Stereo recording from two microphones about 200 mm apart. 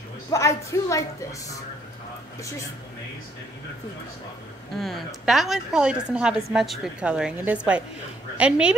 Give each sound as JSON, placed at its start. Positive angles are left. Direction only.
{"t": 0.3, "sound": "a woman's voice", "side_deg": 15}
{"t": 4.7, "sound": "a woman's voice", "side_deg": 0}